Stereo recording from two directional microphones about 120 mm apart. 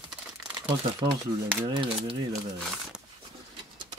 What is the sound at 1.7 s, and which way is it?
Speech, 45° right (ahead or behind).